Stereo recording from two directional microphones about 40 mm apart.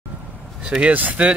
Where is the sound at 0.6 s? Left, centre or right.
Right.